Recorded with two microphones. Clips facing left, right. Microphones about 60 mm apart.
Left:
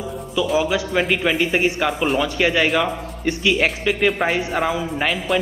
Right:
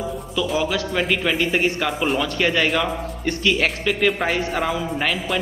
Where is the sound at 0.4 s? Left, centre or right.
Centre.